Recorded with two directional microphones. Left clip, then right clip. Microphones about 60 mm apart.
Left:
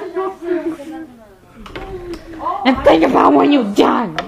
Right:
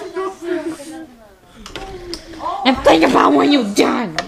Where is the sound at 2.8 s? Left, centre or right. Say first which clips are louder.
Left 1 dB; right.